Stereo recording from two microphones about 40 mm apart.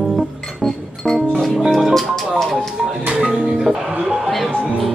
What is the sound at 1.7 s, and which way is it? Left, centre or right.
Music, centre.